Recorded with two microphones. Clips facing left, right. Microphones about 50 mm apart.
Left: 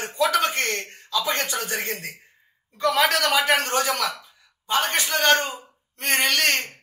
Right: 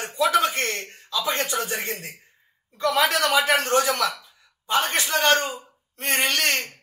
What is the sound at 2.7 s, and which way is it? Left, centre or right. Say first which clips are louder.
A man's voice: left 1 dB; centre.